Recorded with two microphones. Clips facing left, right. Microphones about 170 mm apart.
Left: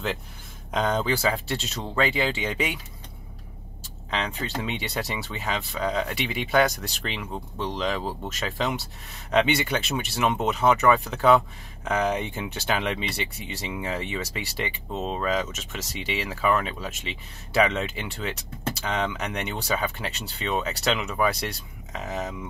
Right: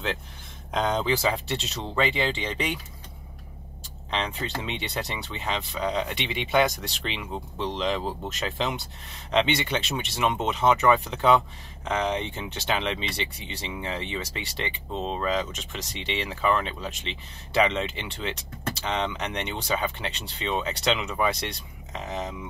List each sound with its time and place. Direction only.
0.7 s speech: centre (ahead or behind)
4.1 s speech: centre (ahead or behind)